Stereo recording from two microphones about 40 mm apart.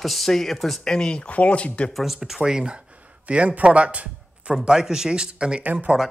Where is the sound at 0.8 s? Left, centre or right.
Left.